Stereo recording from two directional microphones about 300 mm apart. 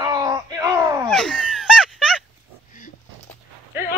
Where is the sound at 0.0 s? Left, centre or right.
Centre.